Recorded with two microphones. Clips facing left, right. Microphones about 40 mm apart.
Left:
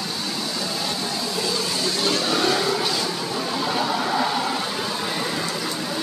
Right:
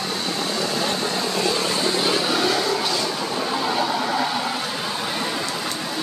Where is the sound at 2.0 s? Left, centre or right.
Centre.